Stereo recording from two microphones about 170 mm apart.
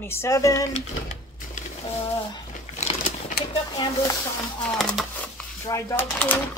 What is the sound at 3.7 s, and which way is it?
Speech, 25° left (ahead or behind).